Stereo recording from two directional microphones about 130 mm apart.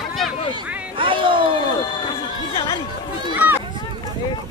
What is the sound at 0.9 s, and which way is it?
Speech, 40° right (ahead or behind).